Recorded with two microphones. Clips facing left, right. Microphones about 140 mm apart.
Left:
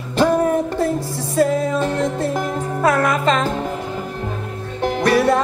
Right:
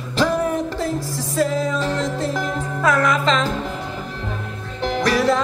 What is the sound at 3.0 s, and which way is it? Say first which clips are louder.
Music: left 1 dB; 55° left (ahead or behind).